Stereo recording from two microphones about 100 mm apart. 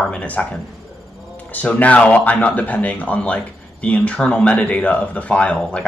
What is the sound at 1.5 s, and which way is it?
Speech, 15° left (ahead or behind).